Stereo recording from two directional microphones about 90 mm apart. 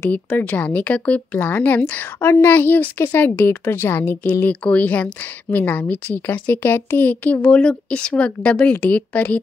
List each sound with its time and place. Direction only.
0.1 s a woman's voice: 20° left (ahead or behind)